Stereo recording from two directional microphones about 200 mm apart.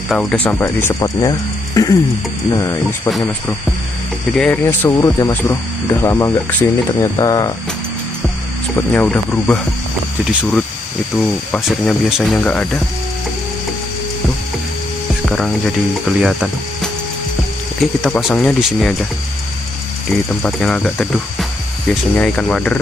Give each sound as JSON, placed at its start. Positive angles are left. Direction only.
{"t": 0.1, "sound": "speech", "side_deg": 0}
{"t": 3.1, "sound": "speech", "side_deg": 0}
{"t": 8.7, "sound": "speech", "side_deg": 5}
{"t": 11.1, "sound": "speech", "side_deg": 5}
{"t": 15.2, "sound": "speech", "side_deg": 0}
{"t": 20.1, "sound": "speech", "side_deg": 5}